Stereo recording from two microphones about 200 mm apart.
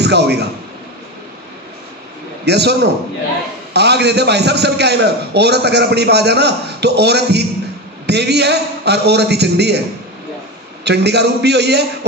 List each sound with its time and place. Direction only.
0.0 s a man's voice: 55° right (ahead or behind)
2.4 s a man's voice: 55° right (ahead or behind)
10.8 s a man's voice: 55° right (ahead or behind)